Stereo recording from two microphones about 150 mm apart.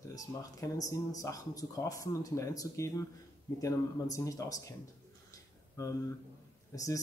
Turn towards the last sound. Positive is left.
turn(degrees=25)  # may be behind; listen again after turning